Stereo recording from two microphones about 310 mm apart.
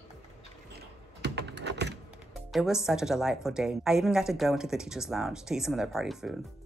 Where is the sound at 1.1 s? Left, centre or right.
Right.